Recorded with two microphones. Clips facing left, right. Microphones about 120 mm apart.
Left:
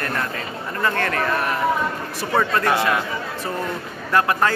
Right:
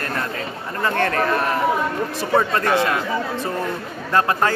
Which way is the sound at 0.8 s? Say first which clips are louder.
Right 2 dB; 20° right (ahead or behind).